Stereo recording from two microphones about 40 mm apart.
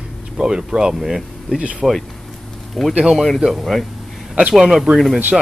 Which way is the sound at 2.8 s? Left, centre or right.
Centre.